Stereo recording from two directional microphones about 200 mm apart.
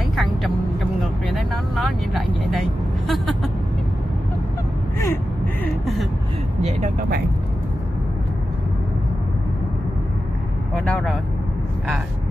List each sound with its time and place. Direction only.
0.1 s vehicle: centre (ahead or behind)
2.5 s vehicle: centre (ahead or behind)
6.6 s vehicle: 35° right (ahead or behind)
10.8 s vehicle: centre (ahead or behind)